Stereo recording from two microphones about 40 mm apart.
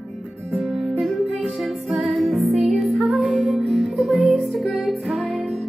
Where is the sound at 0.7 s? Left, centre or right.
Centre.